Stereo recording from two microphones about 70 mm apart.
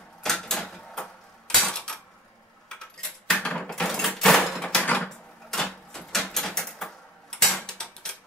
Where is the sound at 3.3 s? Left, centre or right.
Centre.